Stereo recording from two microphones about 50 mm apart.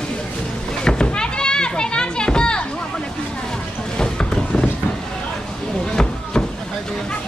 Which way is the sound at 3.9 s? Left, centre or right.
Centre.